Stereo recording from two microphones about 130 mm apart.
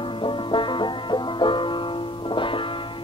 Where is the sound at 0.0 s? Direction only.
40° left (ahead or behind).